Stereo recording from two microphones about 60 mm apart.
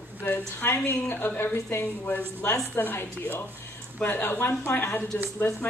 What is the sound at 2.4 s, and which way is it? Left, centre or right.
Speech, left.